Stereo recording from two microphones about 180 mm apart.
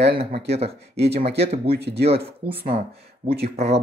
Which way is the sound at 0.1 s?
35° right (ahead or behind).